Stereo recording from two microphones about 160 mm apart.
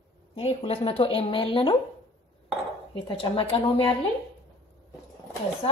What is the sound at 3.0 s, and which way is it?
Speech, 35° left (ahead or behind).